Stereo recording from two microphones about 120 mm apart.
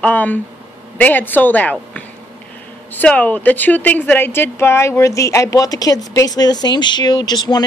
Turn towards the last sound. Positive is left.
turn(degrees=35)  # may be behind; listen again after turning